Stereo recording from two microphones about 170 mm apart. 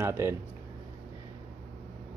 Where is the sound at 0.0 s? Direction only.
15° right (ahead or behind).